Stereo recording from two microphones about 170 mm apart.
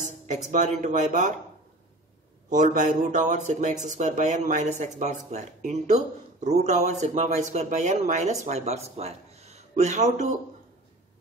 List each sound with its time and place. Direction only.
0.3 s speech: 45° right (ahead or behind)
2.5 s speech: 45° right (ahead or behind)
8.9 s a sound: 40° right (ahead or behind)